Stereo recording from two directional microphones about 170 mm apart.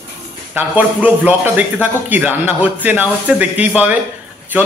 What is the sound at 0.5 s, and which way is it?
A man's voice, 10° right (ahead or behind).